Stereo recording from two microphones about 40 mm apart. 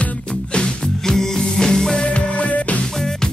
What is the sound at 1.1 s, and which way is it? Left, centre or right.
Music, centre.